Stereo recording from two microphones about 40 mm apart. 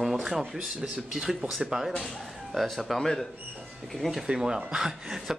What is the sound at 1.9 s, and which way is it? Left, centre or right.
Speech, centre.